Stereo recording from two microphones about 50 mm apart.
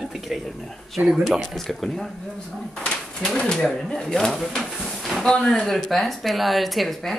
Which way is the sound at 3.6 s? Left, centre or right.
Centre.